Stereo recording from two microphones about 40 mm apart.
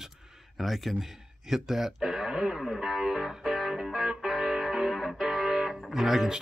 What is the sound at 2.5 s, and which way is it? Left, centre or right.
Music, centre.